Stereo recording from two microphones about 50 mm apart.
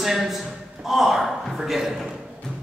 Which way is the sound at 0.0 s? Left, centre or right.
Centre.